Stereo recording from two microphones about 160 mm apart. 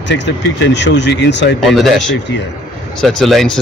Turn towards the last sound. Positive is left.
turn(degrees=0)  # may be behind; listen again after turning